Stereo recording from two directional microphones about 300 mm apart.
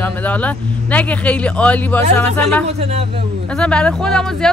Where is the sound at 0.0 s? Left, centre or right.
Centre.